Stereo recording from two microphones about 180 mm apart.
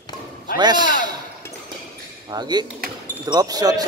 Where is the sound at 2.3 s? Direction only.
25° right (ahead or behind).